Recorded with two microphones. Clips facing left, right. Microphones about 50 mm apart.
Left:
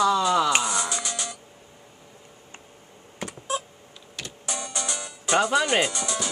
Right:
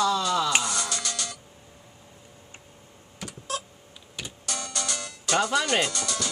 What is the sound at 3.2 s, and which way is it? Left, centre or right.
Typing, left.